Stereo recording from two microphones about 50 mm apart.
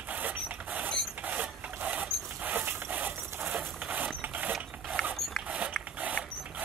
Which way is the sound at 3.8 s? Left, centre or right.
Right.